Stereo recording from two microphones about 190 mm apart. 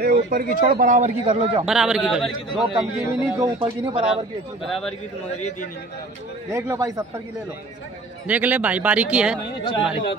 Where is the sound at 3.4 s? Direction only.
25° right (ahead or behind).